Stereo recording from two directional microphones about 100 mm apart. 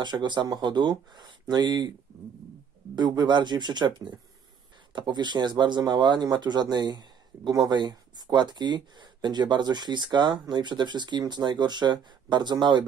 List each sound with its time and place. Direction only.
0.0 s speech: 50° right (ahead or behind)
3.0 s speech: 45° right (ahead or behind)